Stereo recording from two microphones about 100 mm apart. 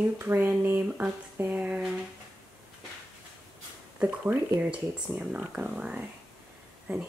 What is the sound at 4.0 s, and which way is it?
Speech, 15° right (ahead or behind).